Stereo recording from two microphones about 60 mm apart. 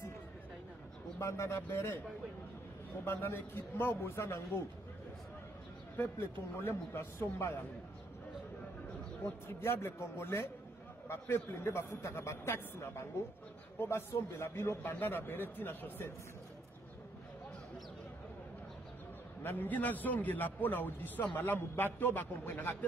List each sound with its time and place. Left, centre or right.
1.2 s a man's voice: left
3.1 s a man's voice: left
5.9 s a man's voice: left
9.2 s a man's voice: left
19.4 s a man's voice: left